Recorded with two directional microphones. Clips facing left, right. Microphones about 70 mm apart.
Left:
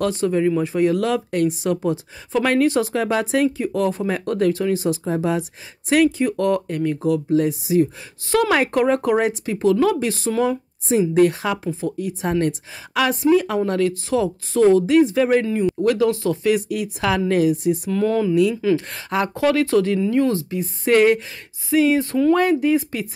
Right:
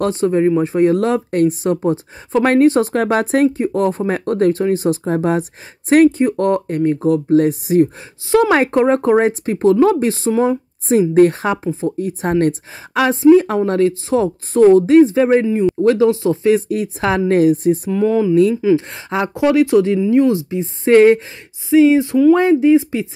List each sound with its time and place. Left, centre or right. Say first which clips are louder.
0.0 s speech: right 4 dB; right
8.3 s speech: right 5 dB; right
10.9 s speech: right 5 dB; right
17.9 s speech: right 3 dB; centre
18.3 s speech: right 5 dB; right
18.6 s speech: right 5 dB; centre